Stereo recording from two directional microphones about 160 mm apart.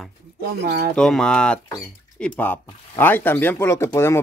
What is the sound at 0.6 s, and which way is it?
Speech, 75° right (ahead or behind).